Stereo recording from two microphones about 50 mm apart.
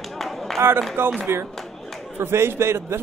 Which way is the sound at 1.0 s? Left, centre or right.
Right.